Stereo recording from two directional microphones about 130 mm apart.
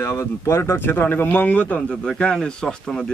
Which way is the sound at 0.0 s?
20° left (ahead or behind).